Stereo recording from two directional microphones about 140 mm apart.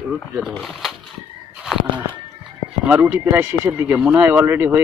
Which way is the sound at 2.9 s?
10° right (ahead or behind).